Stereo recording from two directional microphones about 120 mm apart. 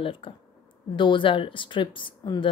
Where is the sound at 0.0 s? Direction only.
45° left (ahead or behind).